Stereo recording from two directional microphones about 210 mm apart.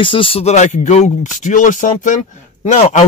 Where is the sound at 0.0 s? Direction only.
25° left (ahead or behind).